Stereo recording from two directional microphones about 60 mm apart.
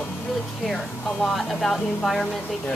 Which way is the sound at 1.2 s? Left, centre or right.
Centre.